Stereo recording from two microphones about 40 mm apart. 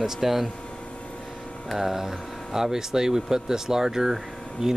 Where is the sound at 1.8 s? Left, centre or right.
Centre.